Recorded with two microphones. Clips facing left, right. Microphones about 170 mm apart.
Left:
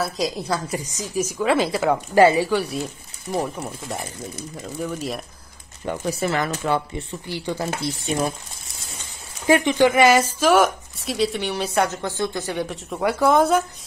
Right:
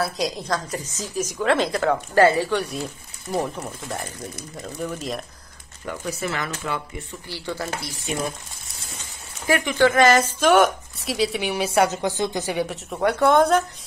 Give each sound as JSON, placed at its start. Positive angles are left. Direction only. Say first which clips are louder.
{"t": 0.0, "sound": "a woman's voice", "louder": "left 1 dB", "side_deg": 0}
{"t": 5.9, "sound": "speech", "louder": "left 4 dB", "side_deg": 30}
{"t": 7.2, "sound": "speech", "louder": "left 3 dB", "side_deg": 15}
{"t": 9.5, "sound": "a woman's voice", "louder": "left 3 dB", "side_deg": 20}
{"t": 12.5, "sound": "a woman's voice", "louder": "right 1 dB", "side_deg": 0}